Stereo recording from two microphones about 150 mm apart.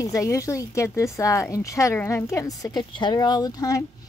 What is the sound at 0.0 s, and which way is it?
A woman's voice, 20° left (ahead or behind).